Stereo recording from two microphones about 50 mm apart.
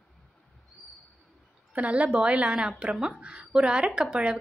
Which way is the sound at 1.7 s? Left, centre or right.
Right.